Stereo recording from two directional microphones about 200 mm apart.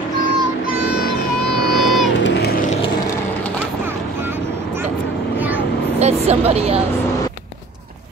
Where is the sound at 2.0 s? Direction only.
65° left (ahead or behind); by 2.8 s 45° left (ahead or behind).